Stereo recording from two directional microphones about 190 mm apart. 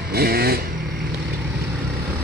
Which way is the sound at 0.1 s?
55° right (ahead or behind).